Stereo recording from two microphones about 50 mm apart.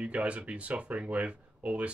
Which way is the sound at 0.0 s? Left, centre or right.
Right.